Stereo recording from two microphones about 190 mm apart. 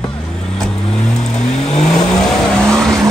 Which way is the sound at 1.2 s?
35° left (ahead or behind).